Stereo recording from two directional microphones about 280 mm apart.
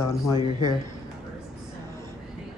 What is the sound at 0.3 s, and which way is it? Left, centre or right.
Speech, centre.